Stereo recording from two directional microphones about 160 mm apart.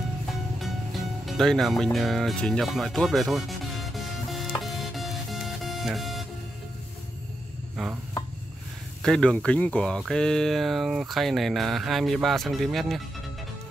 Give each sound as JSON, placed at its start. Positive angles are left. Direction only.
{"t": 1.2, "sound": "music", "side_deg": 0}
{"t": 7.7, "sound": "a sound", "side_deg": -5}
{"t": 9.0, "sound": "speech", "side_deg": 5}